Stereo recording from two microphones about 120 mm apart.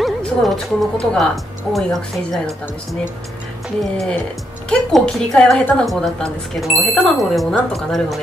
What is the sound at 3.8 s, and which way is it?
A woman's voice, centre (ahead or behind).